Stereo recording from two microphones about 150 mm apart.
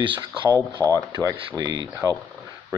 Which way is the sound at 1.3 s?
25° right (ahead or behind).